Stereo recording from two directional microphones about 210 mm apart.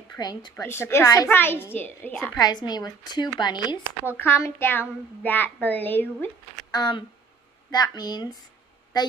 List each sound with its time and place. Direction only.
0.1 s a child's voice: 20° left (ahead or behind)
2.3 s a child's voice: 20° left (ahead or behind)
6.7 s speech: 20° left (ahead or behind)